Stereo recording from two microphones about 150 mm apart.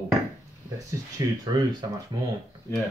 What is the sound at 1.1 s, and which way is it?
Speech, 25° right (ahead or behind).